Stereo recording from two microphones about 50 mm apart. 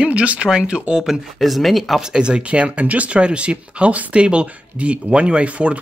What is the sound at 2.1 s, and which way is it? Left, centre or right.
Speech, centre.